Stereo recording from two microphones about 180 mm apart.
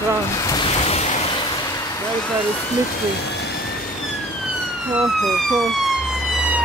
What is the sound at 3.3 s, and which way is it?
Vehicle, 65° left (ahead or behind).